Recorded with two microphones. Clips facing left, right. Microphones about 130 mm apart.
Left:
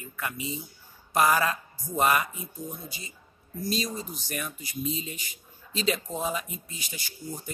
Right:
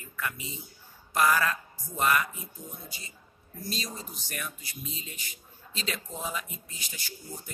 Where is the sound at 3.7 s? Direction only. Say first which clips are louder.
Left 7 dB; 15° left (ahead or behind).